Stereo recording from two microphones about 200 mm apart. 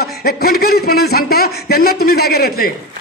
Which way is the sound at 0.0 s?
50° left (ahead or behind).